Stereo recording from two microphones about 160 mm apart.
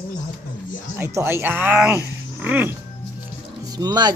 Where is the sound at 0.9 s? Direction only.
15° right (ahead or behind).